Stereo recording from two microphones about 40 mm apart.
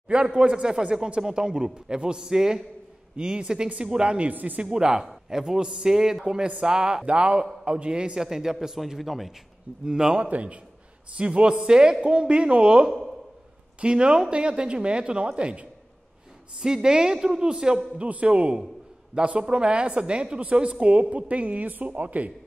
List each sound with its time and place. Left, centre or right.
0.4 s a man's voice: right
4.3 s speech: right
4.6 s a man's voice: centre
6.2 s a man's voice: right
8.2 s speech: centre
9.8 s speech: centre
10.2 s a woman's voice: right
16.5 s speech: centre
17.9 s a man's voice: right